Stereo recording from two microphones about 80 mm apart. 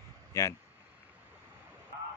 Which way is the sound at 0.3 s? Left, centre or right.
Left.